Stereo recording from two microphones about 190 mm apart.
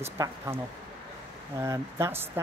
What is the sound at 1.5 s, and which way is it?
Speech, 15° right (ahead or behind).